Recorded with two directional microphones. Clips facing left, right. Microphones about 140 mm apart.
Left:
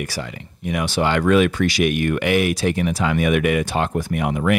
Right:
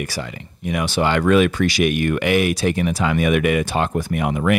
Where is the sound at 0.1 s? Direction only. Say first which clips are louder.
Right 1 dB; 20° right (ahead or behind).